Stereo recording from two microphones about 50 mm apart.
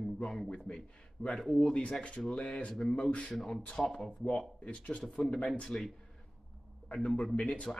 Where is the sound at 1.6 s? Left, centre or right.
Left.